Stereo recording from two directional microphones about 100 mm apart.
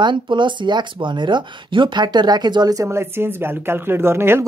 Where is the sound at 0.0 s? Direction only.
50° right (ahead or behind).